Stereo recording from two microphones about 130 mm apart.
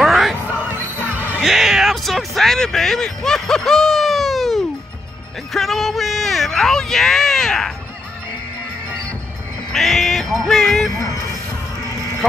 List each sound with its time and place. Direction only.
0.0 s a sound: centre (ahead or behind)
0.7 s music: 15° right (ahead or behind)
1.4 s a sound: centre (ahead or behind)
5.5 s speech: centre (ahead or behind)
9.7 s music: centre (ahead or behind)
11.0 s speech: 25° left (ahead or behind)